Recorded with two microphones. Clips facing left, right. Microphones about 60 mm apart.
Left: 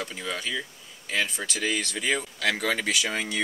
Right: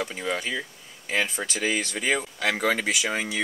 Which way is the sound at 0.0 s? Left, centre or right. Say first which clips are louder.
Right 4 dB; right.